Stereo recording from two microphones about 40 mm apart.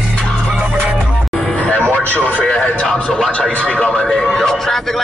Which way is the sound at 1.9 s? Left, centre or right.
Left.